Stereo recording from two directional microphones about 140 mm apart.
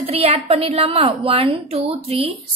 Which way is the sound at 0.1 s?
45° right (ahead or behind).